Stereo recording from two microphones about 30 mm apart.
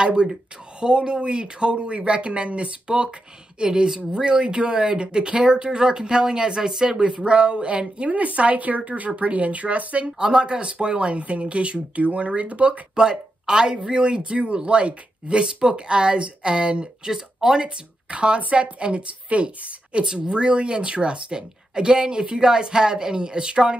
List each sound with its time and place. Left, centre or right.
0.0 s speech: right
8.0 s speech: right
9.1 s speech: right
10.0 s speech: right
12.9 s speech: right
17.1 s speech: centre
18.1 s a woman's voice: right